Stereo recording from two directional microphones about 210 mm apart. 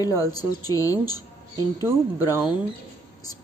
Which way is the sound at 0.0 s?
15° left (ahead or behind).